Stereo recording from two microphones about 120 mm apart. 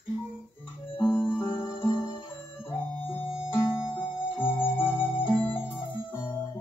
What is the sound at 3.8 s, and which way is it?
Music, 45° left (ahead or behind).